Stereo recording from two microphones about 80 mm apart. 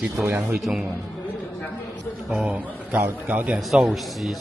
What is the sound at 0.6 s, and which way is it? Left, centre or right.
Speech, centre.